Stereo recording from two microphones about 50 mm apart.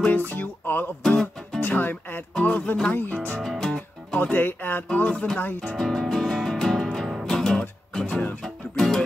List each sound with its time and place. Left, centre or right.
0.1 s music: left
2.4 s speech: left
2.9 s music: left
3.3 s music: centre
4.2 s music: left
4.9 s speech: left
5.4 s music: left
5.8 s music: centre